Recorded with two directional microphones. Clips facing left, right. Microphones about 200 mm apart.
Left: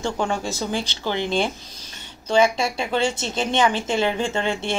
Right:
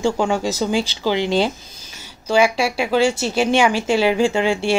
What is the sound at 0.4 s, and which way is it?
Speech, 40° right (ahead or behind).